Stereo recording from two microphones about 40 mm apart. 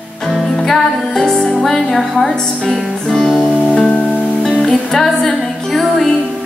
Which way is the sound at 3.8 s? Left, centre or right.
Left.